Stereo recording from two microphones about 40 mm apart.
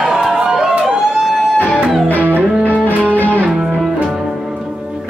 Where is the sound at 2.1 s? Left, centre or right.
Right.